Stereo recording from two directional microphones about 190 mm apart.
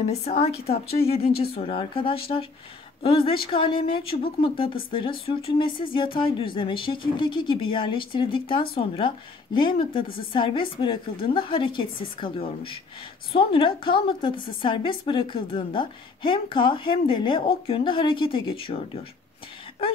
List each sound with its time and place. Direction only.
0.0 s a woman's voice: 35° left (ahead or behind)